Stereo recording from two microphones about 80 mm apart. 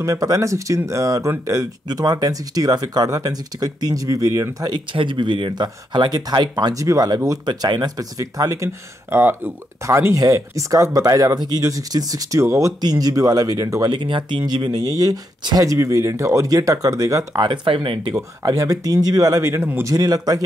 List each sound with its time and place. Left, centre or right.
0.0 s speech: right
1.9 s speech: right
4.6 s speech: right
7.4 s speech: right
9.1 s speech: right
12.4 s speech: right
12.8 s speech: right
13.8 s speech: right
14.4 s speech: right
17.4 s speech: right
18.1 s speech: right
19.8 s speech: right